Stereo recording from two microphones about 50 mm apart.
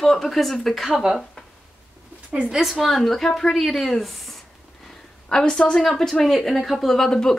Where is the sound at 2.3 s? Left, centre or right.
Right.